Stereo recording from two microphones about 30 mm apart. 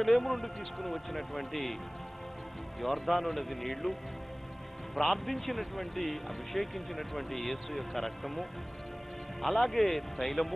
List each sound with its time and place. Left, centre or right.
0.0 s speech: centre
2.8 s speech: centre
4.9 s speech: centre